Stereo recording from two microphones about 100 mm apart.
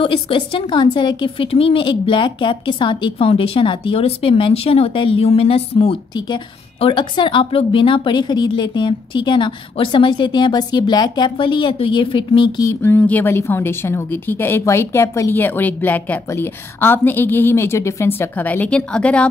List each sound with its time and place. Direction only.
0.0 s a woman's voice: 65° left (ahead or behind)
6.8 s a woman's voice: 55° left (ahead or behind)
12.6 s speech: 20° left (ahead or behind)